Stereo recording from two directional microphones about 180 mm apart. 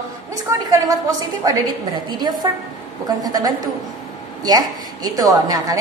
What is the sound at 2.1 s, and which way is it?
A woman's voice, 25° right (ahead or behind).